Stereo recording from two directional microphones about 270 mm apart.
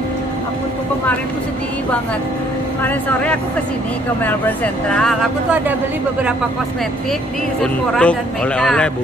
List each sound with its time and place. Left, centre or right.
2.8 s speech: centre
4.9 s speech: centre
7.6 s speech: centre